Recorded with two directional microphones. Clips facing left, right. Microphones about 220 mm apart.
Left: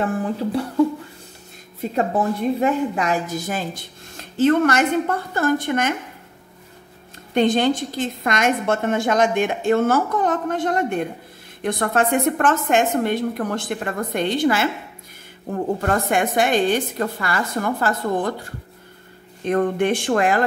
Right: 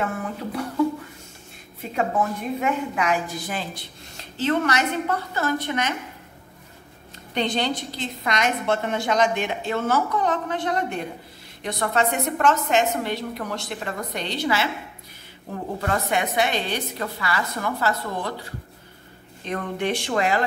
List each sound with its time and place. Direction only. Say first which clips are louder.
0.0 s speech: left 6 dB; 30° left (ahead or behind)
2.0 s a woman's voice: left 3 dB; 35° left (ahead or behind); by 5.9 s 50° left (ahead or behind)
7.3 s a woman's voice: left 7 dB; 50° left (ahead or behind)